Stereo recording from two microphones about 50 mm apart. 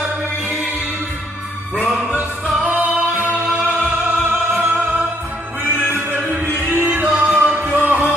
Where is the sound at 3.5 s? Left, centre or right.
Right.